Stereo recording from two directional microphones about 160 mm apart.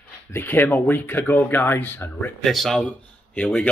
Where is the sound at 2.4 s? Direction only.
Centre (ahead or behind).